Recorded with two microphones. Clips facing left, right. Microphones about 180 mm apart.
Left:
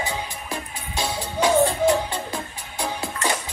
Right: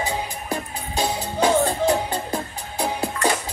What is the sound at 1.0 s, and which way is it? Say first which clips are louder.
Music: right 2 dB; 35° right (ahead or behind).